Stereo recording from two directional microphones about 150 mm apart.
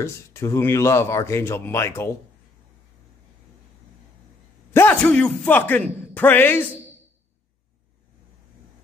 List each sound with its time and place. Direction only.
0.0 s speech: 20° left (ahead or behind)
4.7 s speech: 10° left (ahead or behind)